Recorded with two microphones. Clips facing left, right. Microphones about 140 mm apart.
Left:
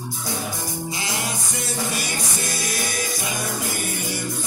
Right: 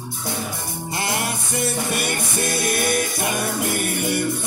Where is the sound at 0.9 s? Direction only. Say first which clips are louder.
Right 7 dB; 60° right (ahead or behind).